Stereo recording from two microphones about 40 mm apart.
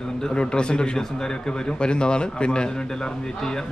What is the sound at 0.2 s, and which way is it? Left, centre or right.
A man's voice, left.